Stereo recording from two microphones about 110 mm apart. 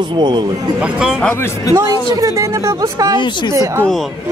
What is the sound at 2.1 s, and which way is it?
Speech, 30° right (ahead or behind).